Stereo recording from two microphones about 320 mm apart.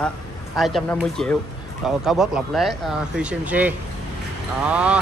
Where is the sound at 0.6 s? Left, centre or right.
Centre.